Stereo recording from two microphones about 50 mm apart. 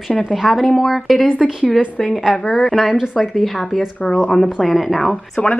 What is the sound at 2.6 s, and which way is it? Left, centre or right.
Speech, centre.